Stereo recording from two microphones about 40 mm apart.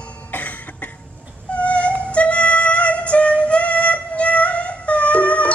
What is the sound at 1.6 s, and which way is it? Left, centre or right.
Music, left.